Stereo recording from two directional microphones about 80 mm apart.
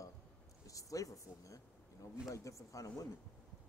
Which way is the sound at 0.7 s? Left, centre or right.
Left.